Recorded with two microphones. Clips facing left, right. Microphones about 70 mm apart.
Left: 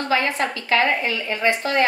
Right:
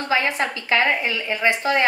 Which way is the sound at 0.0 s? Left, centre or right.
Right.